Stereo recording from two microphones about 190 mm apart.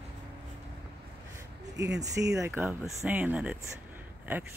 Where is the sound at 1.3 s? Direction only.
20° right (ahead or behind).